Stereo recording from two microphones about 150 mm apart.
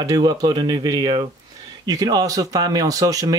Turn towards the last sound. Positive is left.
turn(degrees=-25)  # may be behind; listen again after turning